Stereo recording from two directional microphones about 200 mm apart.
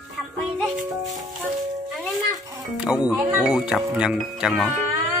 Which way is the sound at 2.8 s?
5° right (ahead or behind).